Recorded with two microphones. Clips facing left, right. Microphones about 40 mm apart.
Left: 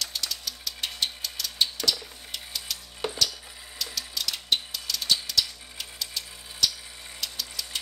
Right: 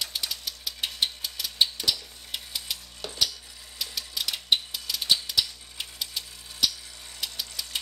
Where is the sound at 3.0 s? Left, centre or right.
Left.